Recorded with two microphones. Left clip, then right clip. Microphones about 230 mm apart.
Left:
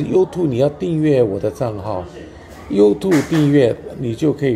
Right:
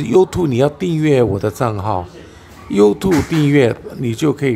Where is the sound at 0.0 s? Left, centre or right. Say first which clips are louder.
Right 3 dB; right.